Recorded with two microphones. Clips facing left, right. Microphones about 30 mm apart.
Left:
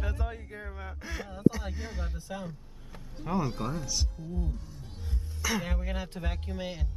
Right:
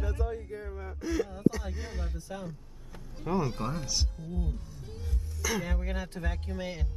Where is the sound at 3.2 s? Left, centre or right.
Centre.